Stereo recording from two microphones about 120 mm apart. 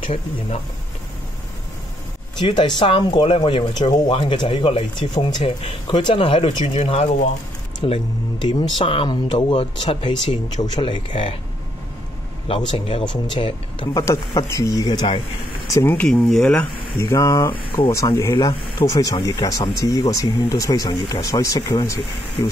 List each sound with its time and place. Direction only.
0.0 s speech: 55° left (ahead or behind)
2.3 s speech: 40° left (ahead or behind)
5.1 s speech: 40° left (ahead or behind)
6.7 s speech: 60° left (ahead or behind)
7.8 s speech: 50° left (ahead or behind)
8.4 s speech: 40° left (ahead or behind)
12.4 s speech: 50° left (ahead or behind)
14.5 s speech: 25° left (ahead or behind)
15.7 s speech: 20° left (ahead or behind)
16.1 s speech: 5° left (ahead or behind)
16.5 s speech: 25° left (ahead or behind)
17.5 s speech: 45° left (ahead or behind)
17.9 s speech: 25° left (ahead or behind)